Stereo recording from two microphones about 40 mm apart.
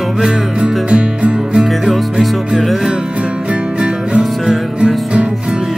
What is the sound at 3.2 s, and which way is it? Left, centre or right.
Music, right.